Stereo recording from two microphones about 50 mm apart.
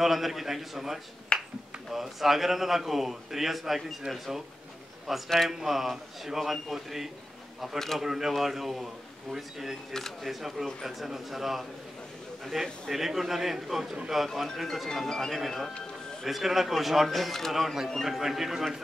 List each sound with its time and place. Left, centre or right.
0.0 s a man's voice: centre
1.3 s finger snapping: centre
1.9 s a man's voice: centre
12.8 s a man's voice: centre